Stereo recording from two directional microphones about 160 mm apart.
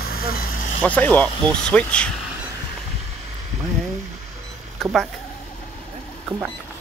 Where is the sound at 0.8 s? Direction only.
10° left (ahead or behind).